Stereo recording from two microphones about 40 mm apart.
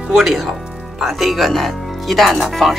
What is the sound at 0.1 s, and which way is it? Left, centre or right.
Speech, centre.